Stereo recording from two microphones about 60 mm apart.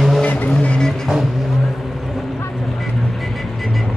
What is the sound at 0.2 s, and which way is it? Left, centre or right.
Vehicle, left.